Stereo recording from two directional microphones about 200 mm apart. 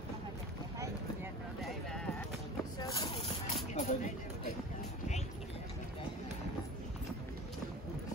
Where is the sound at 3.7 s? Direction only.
35° left (ahead or behind).